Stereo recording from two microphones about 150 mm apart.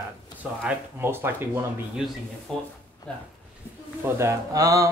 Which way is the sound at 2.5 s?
5° left (ahead or behind).